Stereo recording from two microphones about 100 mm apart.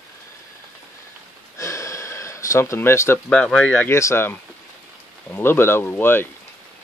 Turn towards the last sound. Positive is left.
turn(degrees=20)  # may be behind; listen again after turning